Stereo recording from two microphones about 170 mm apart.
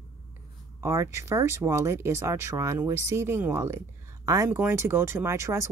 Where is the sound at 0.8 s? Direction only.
15° right (ahead or behind).